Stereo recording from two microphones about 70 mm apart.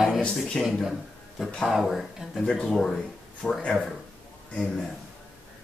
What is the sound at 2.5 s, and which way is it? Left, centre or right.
Speech, centre.